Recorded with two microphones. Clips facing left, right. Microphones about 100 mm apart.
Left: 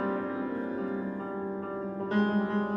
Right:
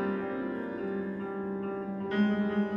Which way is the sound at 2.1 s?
25° left (ahead or behind).